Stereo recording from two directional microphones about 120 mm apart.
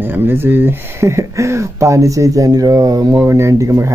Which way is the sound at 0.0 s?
15° right (ahead or behind).